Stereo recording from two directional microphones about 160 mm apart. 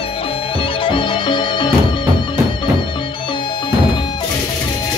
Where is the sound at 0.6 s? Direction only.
30° left (ahead or behind).